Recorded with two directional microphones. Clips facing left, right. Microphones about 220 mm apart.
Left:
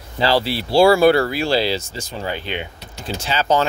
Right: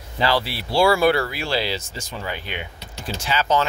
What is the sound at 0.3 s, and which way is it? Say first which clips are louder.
Speech: left 7 dB; 30° left (ahead or behind).